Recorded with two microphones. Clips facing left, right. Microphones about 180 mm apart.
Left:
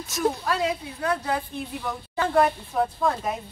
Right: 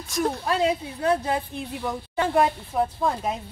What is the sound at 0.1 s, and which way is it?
Speech, centre (ahead or behind).